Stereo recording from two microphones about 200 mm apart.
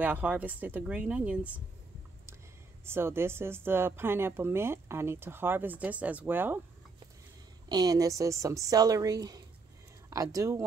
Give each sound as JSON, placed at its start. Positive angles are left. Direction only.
{"t": 0.0, "sound": "speech", "side_deg": -5}
{"t": 2.8, "sound": "speech", "side_deg": -10}
{"t": 7.7, "sound": "speech", "side_deg": -20}